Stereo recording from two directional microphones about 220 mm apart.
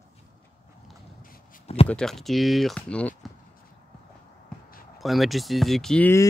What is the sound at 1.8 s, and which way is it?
Speech, 5° left (ahead or behind).